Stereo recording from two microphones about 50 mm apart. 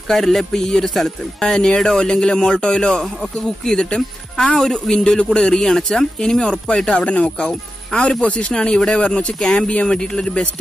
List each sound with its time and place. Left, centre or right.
0.1 s speech: centre